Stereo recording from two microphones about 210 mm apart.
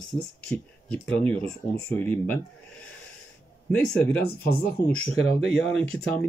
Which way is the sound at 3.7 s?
5° left (ahead or behind).